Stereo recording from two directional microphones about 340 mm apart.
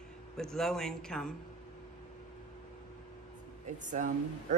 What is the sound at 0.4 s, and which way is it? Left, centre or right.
Speech, centre.